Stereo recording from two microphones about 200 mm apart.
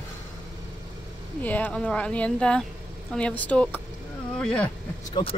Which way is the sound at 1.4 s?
10° left (ahead or behind).